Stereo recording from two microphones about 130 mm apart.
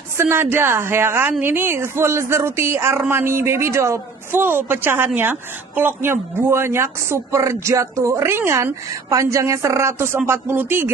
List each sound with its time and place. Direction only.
0.2 s a woman's voice: 15° right (ahead or behind)